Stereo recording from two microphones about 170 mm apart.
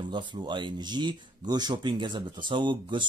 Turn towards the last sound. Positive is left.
turn(degrees=-30)  # may be behind; listen again after turning